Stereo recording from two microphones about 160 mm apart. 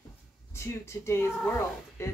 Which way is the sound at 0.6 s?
15° left (ahead or behind).